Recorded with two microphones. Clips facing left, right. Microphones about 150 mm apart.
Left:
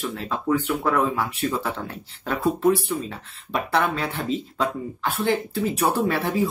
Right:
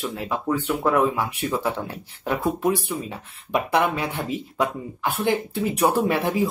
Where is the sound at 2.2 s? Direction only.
15° right (ahead or behind).